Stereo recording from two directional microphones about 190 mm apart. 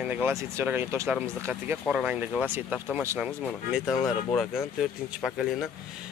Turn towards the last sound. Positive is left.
turn(degrees=0)  # may be behind; listen again after turning